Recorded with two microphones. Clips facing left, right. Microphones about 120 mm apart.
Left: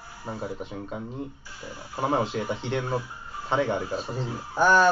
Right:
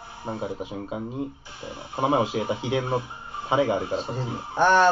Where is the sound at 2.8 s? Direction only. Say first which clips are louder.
Right 3 dB; 20° right (ahead or behind).